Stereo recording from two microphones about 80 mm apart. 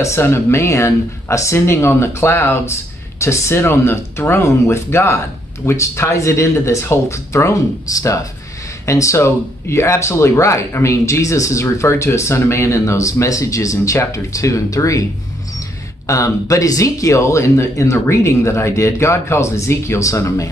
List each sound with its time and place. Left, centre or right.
0.0 s speech: left
16.1 s speech: left